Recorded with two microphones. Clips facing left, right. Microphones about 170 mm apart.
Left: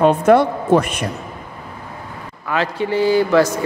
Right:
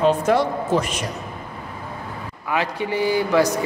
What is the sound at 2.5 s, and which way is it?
A man's voice, 15° right (ahead or behind).